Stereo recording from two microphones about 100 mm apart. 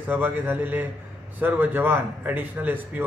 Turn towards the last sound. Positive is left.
turn(degrees=-20)  # may be behind; listen again after turning